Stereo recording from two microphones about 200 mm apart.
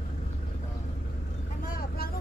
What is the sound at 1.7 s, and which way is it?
Vehicle, 45° left (ahead or behind).